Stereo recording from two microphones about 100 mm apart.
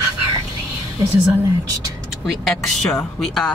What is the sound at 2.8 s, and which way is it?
Speech, 5° left (ahead or behind).